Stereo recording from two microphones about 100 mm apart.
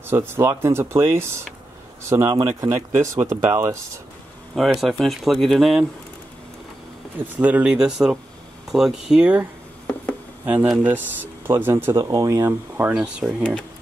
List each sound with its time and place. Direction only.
0.0 s speech: 25° right (ahead or behind)
4.6 s speech: centre (ahead or behind)
7.2 s speech: 15° right (ahead or behind)
10.4 s speech: 15° right (ahead or behind)
12.9 s speech: 10° right (ahead or behind)